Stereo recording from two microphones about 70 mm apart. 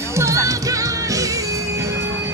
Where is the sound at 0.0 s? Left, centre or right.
Right.